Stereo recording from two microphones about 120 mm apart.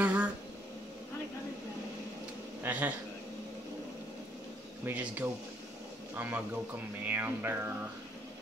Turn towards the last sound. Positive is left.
turn(degrees=-15)  # may be behind; listen again after turning